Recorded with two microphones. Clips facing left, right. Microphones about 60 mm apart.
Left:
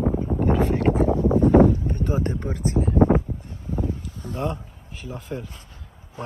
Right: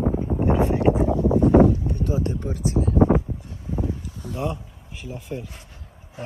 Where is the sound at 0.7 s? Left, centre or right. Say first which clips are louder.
Right 1 dB; left.